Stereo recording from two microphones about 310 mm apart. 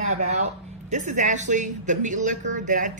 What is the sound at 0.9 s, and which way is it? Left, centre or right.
Speech, right.